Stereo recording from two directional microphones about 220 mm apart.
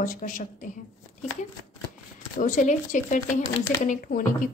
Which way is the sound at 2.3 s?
35° left (ahead or behind).